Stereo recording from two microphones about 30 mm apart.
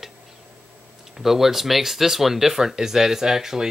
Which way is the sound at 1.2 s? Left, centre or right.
Centre.